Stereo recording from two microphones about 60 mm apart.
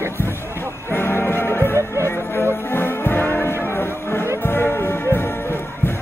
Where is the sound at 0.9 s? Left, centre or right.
Left.